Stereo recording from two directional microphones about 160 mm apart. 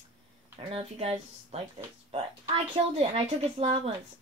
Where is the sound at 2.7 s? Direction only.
35° right (ahead or behind).